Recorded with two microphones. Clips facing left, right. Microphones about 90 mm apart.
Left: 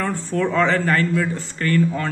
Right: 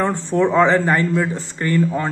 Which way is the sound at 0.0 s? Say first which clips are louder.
Right 4 dB; 20° right (ahead or behind).